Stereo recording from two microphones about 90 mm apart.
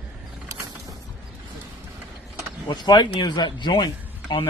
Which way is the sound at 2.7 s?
55° left (ahead or behind).